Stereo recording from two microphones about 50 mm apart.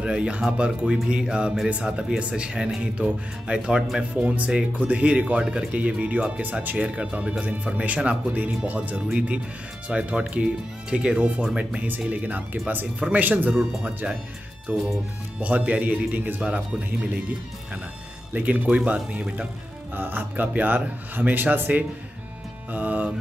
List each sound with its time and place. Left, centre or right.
0.0 s speech: right
4.1 s speech: right
5.4 s speech: centre
5.7 s speech: right
13.6 s speech: right
14.7 s speech: right
20.0 s speech: right